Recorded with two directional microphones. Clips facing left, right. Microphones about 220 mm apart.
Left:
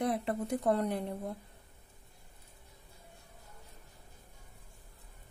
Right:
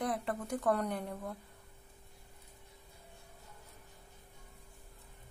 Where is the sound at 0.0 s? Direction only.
25° left (ahead or behind).